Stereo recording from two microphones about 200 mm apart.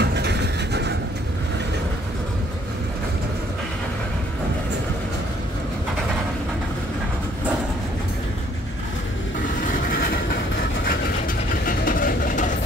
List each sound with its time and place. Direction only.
0.0 s vehicle: 55° right (ahead or behind)
9.8 s train: 45° left (ahead or behind)
11.6 s train: 45° left (ahead or behind)